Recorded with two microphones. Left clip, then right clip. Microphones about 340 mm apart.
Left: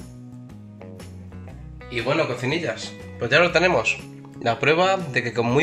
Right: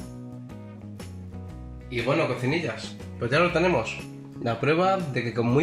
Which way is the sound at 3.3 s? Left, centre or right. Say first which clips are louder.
Left 5 dB; left.